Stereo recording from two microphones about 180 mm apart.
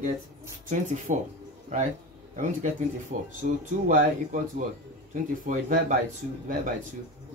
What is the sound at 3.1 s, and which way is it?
Speech, 45° right (ahead or behind).